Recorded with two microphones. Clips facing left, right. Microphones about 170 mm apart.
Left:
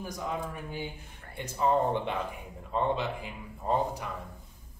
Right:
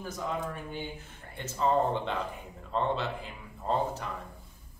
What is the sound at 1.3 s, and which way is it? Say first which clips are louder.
Speech: even; 15° left (ahead or behind).